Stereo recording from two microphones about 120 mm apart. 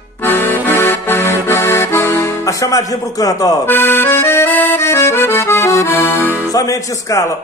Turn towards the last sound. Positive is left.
turn(degrees=30)  # may be behind; listen again after turning